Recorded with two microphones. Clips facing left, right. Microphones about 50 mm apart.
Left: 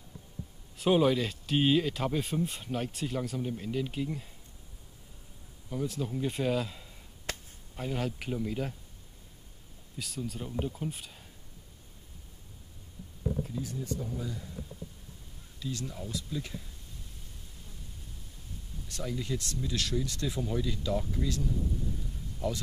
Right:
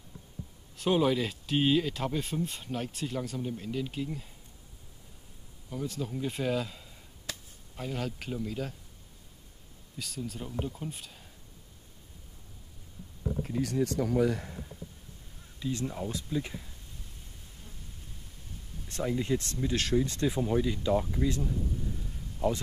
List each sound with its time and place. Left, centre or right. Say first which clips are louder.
0.7 s speech: left 1 dB; centre
5.7 s speech: left 1 dB; centre
7.3 s chop: left 3 dB; left
7.7 s speech: left 1 dB; centre
9.9 s speech: left 1 dB; centre
13.4 s speech: right 6 dB; right
15.6 s speech: right 5 dB; right
16.3 s speech: right 4 dB; centre
18.9 s speech: right 5 dB; right